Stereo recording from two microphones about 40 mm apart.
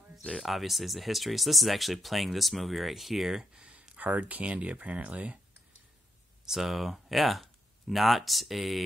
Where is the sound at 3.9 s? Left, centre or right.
Right.